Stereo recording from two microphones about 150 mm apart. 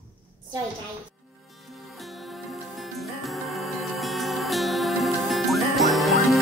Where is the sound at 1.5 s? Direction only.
Centre (ahead or behind).